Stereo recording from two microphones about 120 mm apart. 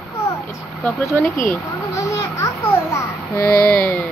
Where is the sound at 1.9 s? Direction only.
25° left (ahead or behind).